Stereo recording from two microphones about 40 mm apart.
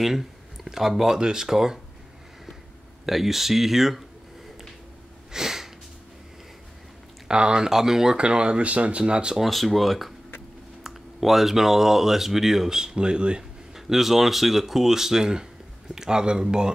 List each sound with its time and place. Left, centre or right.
0.7 s speech: centre
3.1 s speech: centre
5.3 s sniff: centre
7.2 s speech: right
8.2 s speech: right
9.4 s speech: centre; by 13.4 s right
13.4 s speech: centre